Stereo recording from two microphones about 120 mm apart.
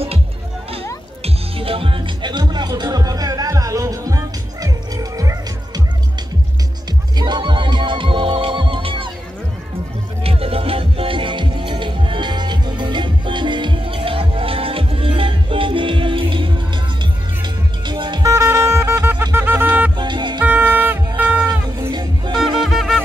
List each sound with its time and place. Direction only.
1.2 s music: 50° right (ahead or behind); by 5.4 s 30° right (ahead or behind)
7.2 s music: 40° right (ahead or behind)
10.2 s music: 55° right (ahead or behind)
18.3 s music: 25° right (ahead or behind)
20.0 s music: 40° right (ahead or behind)
20.4 s music: 15° right (ahead or behind)
21.1 s music: 35° right (ahead or behind)
22.4 s music: centre (ahead or behind)